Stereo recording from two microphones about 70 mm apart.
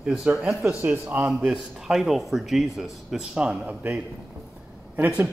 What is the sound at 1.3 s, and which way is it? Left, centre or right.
Speech, centre.